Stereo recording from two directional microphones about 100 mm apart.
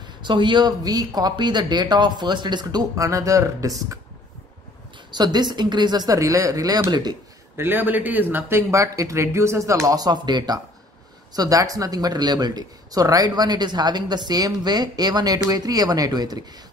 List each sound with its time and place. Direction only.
0.2 s speech: 50° right (ahead or behind); by 4.0 s 35° right (ahead or behind)
5.1 s speech: 45° right (ahead or behind)
7.5 s speech: 20° right (ahead or behind); by 16.3 s 40° right (ahead or behind)